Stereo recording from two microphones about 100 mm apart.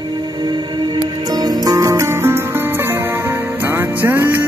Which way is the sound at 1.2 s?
40° right (ahead or behind).